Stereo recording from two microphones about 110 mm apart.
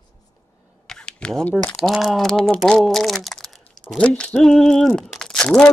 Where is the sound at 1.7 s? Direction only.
Centre (ahead or behind).